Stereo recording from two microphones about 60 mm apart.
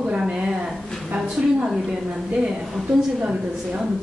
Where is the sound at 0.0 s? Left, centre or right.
Centre.